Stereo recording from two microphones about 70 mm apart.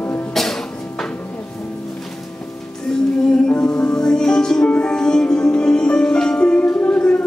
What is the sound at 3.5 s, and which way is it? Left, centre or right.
Music, centre.